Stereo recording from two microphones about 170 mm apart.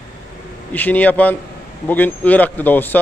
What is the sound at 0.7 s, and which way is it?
A man's voice, 10° left (ahead or behind).